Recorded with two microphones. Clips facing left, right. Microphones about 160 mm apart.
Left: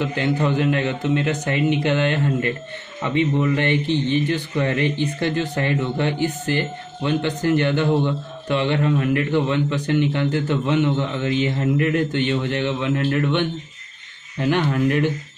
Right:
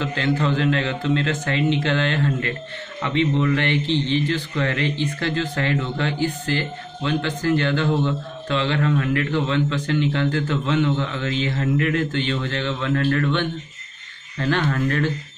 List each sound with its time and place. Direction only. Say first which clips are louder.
0.0 s speech: left 1 dB; 15° left (ahead or behind)